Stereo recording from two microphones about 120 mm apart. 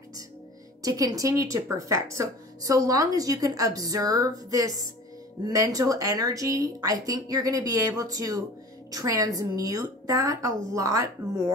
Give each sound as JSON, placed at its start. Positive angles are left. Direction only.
{"t": 0.8, "sound": "a woman's voice", "side_deg": -30}